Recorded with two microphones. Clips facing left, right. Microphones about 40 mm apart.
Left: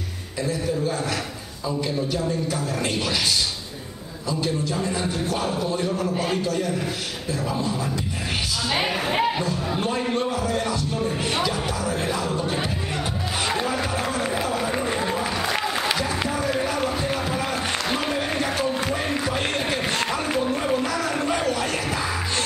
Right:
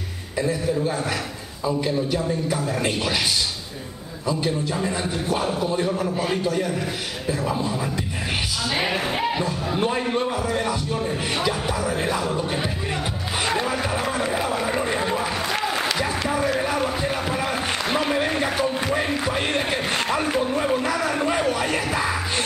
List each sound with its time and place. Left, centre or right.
0.4 s a man's voice: centre
4.3 s a man's voice: centre
9.4 s a man's voice: centre
13.5 s run: centre
16.5 s a sound: centre